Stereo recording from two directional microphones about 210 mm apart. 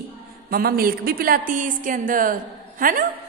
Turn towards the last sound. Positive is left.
turn(degrees=-40)  # may be behind; listen again after turning